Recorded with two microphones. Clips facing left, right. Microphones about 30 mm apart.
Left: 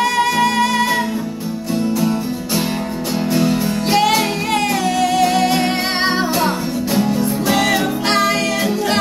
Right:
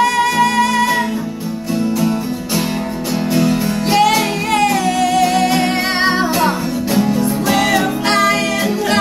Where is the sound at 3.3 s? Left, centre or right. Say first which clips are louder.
Right 1 dB; centre.